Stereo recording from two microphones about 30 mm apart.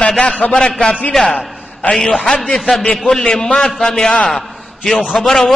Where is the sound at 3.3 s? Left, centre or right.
Centre.